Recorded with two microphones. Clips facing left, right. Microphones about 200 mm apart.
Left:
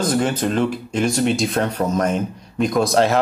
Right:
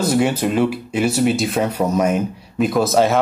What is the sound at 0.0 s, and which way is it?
Speech, 10° right (ahead or behind).